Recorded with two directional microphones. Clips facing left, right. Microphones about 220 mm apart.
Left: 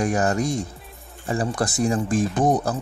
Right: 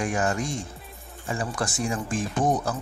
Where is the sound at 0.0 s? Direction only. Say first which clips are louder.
Left 5 dB; 40° left (ahead or behind).